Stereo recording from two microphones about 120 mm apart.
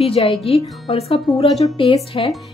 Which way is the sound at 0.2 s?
50° left (ahead or behind).